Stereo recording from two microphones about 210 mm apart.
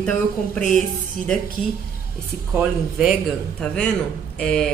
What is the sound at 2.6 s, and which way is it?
A woman's voice, centre (ahead or behind).